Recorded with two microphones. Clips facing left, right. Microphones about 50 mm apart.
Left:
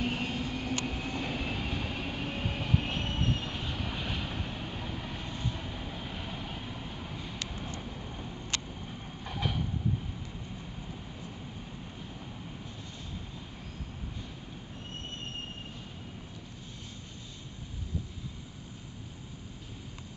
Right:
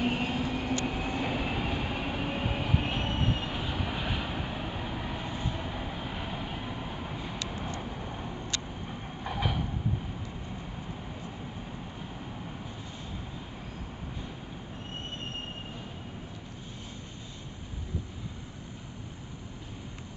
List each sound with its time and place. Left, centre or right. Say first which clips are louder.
0.0 s train: right 4 dB; centre
7.8 s vehicle: right 4 dB; centre
8.8 s train: right 4 dB; centre